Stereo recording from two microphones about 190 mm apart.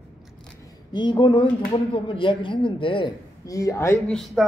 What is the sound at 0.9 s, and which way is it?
A man's voice, 25° left (ahead or behind).